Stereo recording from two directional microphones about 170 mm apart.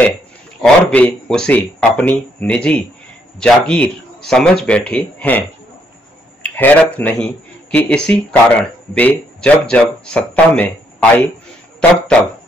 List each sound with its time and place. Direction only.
0.6 s speech: 5° left (ahead or behind)
6.4 s speech: 10° left (ahead or behind)